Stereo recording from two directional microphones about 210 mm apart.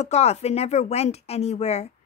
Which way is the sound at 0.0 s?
30° left (ahead or behind).